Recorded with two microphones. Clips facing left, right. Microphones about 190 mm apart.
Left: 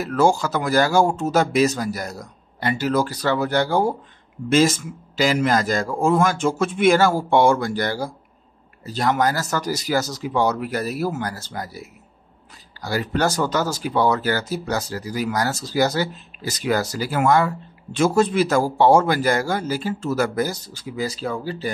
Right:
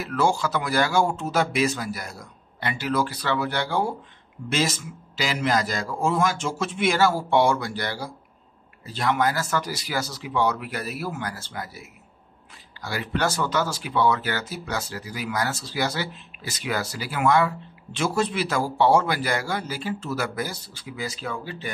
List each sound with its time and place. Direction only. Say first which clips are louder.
0.0 s a man's voice: left 5 dB; 40° left (ahead or behind)